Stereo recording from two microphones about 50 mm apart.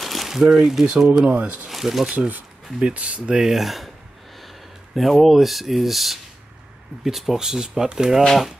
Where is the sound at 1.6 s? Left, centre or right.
Centre.